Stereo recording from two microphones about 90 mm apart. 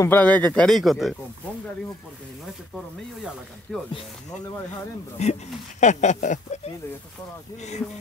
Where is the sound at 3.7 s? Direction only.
10° left (ahead or behind).